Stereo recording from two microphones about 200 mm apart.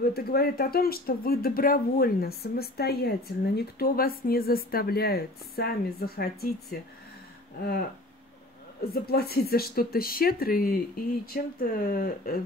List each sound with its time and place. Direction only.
0.1 s speech: 50° left (ahead or behind)
8.8 s speech: 50° left (ahead or behind)